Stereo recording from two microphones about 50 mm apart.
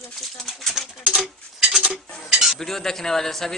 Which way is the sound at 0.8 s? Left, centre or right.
Centre.